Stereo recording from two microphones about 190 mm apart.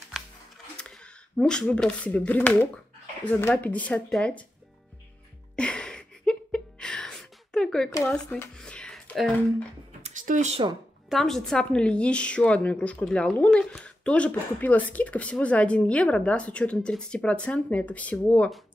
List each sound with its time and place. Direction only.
0.1 s music: centre (ahead or behind)
0.7 s a woman's voice: 5° left (ahead or behind)
5.6 s music: 5° left (ahead or behind)
7.9 s speech: 10° left (ahead or behind)
10.0 s a sound: 45° right (ahead or behind)
11.1 s a woman's voice: centre (ahead or behind)